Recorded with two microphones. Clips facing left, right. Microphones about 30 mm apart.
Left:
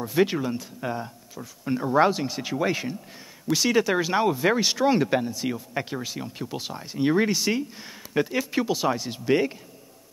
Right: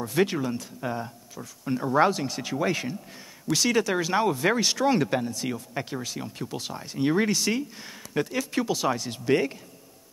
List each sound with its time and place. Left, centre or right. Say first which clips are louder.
0.0 s speech: left 2 dB; centre